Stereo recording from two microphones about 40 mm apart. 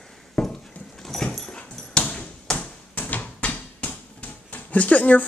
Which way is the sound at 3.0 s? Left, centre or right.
Left.